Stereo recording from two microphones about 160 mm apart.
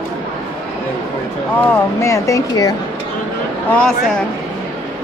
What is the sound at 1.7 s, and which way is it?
Speech, 20° left (ahead or behind).